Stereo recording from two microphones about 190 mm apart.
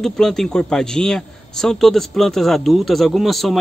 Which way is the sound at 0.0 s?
Centre (ahead or behind).